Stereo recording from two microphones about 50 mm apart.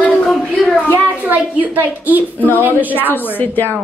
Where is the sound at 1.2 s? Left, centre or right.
Right.